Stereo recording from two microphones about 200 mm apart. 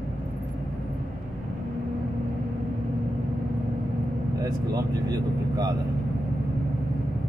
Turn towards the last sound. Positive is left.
turn(degrees=-20)  # may be behind; listen again after turning